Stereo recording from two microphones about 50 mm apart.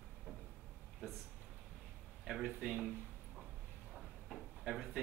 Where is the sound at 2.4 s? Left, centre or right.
Right.